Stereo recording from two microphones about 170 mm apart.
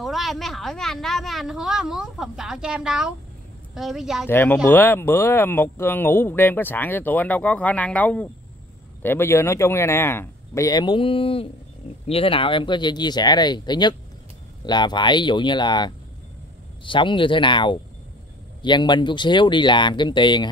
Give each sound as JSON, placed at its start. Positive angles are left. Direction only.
{"t": 0.0, "sound": "a woman's voice", "side_deg": 0}
{"t": 4.3, "sound": "speech", "side_deg": 15}